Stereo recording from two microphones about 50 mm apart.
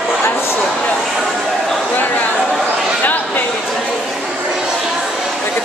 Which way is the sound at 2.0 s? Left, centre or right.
Left.